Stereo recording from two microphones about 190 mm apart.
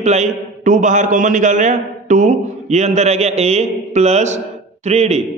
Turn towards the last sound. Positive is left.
turn(degrees=-35)  # may be behind; listen again after turning